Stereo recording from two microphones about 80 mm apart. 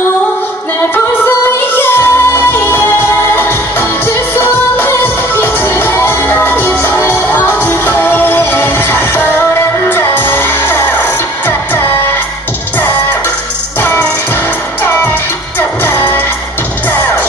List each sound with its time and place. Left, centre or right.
1.8 s music: left
15.8 s music: left